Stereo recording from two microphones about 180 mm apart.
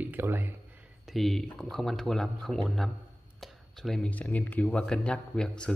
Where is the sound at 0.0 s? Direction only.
10° right (ahead or behind).